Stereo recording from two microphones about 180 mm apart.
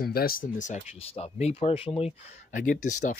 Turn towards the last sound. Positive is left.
turn(degrees=45)  # may be behind; listen again after turning